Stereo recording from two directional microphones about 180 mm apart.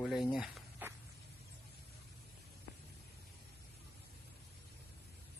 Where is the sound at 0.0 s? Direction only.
Centre (ahead or behind).